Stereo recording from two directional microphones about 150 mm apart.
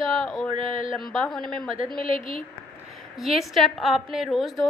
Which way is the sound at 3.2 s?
Centre (ahead or behind).